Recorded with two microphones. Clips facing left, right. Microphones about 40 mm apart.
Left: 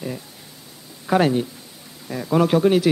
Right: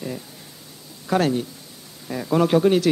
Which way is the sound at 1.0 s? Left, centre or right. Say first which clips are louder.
Left 3 dB; centre.